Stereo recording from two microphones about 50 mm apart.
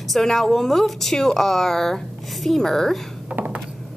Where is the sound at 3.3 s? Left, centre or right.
Right.